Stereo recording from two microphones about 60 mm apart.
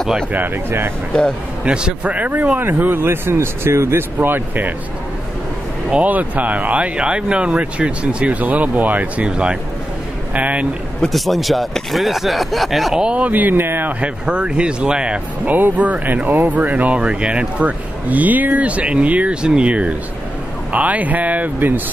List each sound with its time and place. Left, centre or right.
0.3 s speech: right
1.6 s speech: centre
2.6 s speech: right
5.9 s speech: right
11.1 s speech: centre
12.9 s speech: centre; by 13.9 s right
14.0 s speech: centre
15.4 s speech: right